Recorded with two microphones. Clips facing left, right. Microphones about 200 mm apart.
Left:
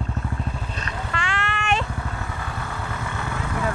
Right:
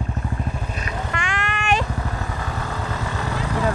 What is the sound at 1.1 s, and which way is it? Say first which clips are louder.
Vehicle: left 2 dB; 15° right (ahead or behind).